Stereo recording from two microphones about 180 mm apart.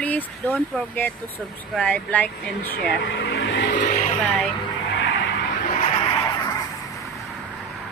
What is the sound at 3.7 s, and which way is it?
Vehicle, 50° left (ahead or behind).